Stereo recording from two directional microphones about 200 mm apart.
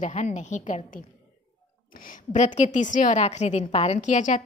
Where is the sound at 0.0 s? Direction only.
35° left (ahead or behind).